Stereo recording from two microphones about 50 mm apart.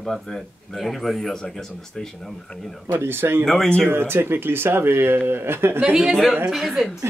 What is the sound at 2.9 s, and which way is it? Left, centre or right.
Speech, right.